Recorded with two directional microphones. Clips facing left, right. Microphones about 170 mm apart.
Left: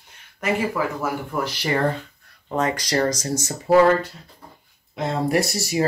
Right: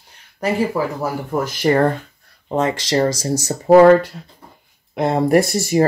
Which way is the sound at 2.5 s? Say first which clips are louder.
Right 4 dB; 25° right (ahead or behind).